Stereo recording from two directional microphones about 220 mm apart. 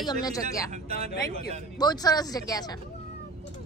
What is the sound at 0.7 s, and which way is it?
Speech, 30° right (ahead or behind).